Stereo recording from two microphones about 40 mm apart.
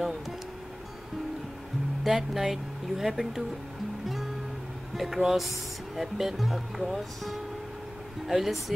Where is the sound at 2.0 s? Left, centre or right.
Centre.